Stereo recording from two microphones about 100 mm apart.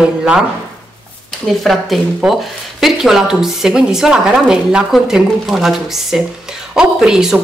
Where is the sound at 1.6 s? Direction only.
Centre (ahead or behind).